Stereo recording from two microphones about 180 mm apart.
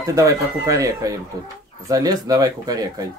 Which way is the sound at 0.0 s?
20° right (ahead or behind).